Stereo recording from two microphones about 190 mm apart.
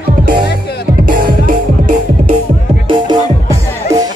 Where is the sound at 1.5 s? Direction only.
40° right (ahead or behind).